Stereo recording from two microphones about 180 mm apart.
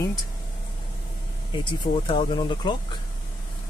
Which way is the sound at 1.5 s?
25° left (ahead or behind).